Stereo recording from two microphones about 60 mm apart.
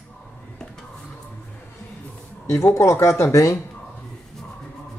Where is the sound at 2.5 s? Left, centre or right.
Left.